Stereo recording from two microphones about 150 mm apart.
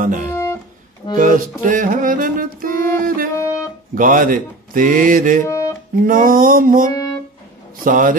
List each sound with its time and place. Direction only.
0.3 s music: 15° left (ahead or behind)
1.1 s music: 65° right (ahead or behind)
3.3 s music: 20° left (ahead or behind)
3.9 s a man's voice: 65° right (ahead or behind)
5.4 s music: 20° left (ahead or behind)
6.0 s a man's voice: 65° right (ahead or behind)
6.9 s music: 25° left (ahead or behind)
7.8 s a man's voice: 65° right (ahead or behind)